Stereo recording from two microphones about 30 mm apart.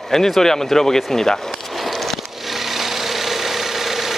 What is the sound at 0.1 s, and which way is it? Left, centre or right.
Speech, centre.